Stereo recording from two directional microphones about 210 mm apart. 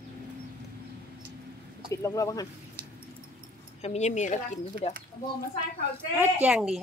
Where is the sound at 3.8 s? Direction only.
30° left (ahead or behind).